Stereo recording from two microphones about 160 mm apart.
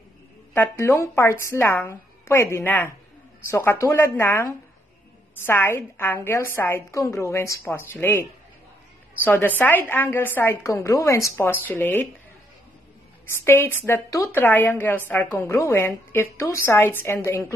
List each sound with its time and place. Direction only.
0.5 s a woman's voice: 15° left (ahead or behind)
13.3 s a woman's voice: 15° left (ahead or behind)